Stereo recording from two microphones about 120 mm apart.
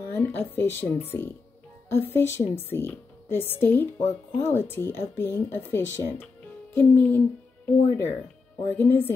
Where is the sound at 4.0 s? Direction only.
85° left.